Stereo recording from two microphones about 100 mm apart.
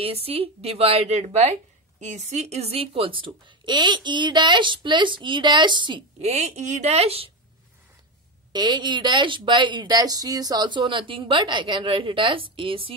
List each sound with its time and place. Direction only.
0.0 s a woman's voice: 90° right; by 6.0 s 50° right (ahead or behind)
6.2 s a woman's voice: 90° right
8.5 s a woman's voice: 45° right (ahead or behind); by 12.9 s 65° right (ahead or behind)